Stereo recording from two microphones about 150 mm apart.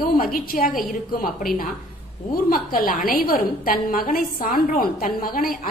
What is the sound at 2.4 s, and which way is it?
A woman's voice, 70° left (ahead or behind).